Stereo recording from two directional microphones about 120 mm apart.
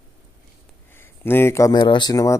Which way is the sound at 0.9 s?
20° left (ahead or behind).